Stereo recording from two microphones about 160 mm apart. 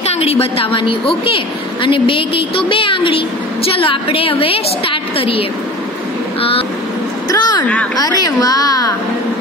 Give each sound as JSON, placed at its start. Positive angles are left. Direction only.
{"t": 0.1, "sound": "a woman's voice", "side_deg": 40}
{"t": 7.2, "sound": "speech", "side_deg": 25}
{"t": 7.6, "sound": "speech", "side_deg": 10}
{"t": 7.9, "sound": "a woman's voice", "side_deg": 25}